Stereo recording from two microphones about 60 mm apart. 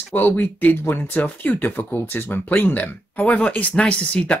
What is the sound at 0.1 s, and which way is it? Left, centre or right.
Speech, left.